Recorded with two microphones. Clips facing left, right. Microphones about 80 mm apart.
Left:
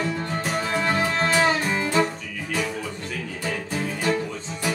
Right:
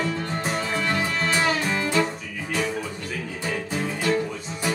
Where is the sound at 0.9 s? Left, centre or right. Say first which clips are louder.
Left 3 dB; left.